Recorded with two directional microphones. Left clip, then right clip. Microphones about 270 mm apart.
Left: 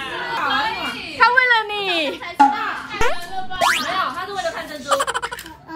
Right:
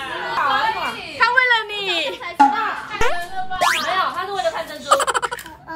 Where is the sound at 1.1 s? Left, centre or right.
Centre.